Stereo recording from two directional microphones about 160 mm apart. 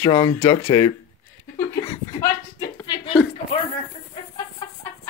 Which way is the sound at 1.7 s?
25° left (ahead or behind).